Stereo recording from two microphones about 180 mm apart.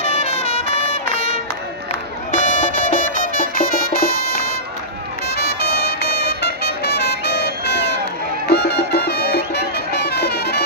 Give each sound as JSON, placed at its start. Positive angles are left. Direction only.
{"t": 0.0, "sound": "brass instrument", "side_deg": 40}
{"t": 2.3, "sound": "music", "side_deg": 45}